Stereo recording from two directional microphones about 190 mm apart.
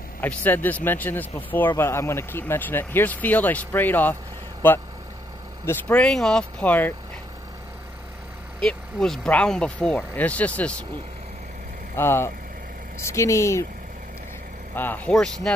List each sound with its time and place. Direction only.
0.2 s speech: 10° left (ahead or behind)
8.5 s speech: 5° left (ahead or behind)
11.9 s speech: 15° left (ahead or behind)
14.8 s speech: 5° left (ahead or behind)